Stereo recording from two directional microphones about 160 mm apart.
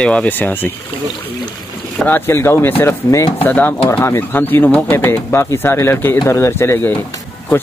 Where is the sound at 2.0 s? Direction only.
15° left (ahead or behind).